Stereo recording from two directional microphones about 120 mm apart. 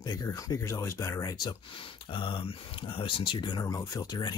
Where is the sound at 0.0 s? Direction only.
30° left (ahead or behind).